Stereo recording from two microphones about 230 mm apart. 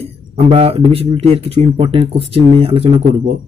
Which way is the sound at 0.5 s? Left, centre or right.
Right.